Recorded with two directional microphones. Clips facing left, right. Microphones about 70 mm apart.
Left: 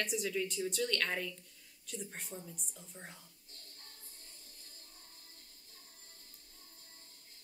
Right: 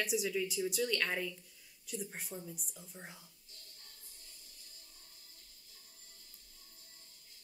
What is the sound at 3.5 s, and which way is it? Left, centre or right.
Child singing, left.